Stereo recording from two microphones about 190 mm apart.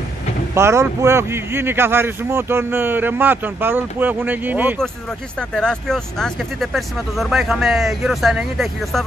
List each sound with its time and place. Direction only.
0.6 s speech: 15° right (ahead or behind)
5.5 s speech: 5° left (ahead or behind)